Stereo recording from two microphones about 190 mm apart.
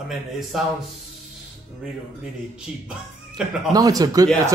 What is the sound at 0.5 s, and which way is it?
Speech, centre (ahead or behind).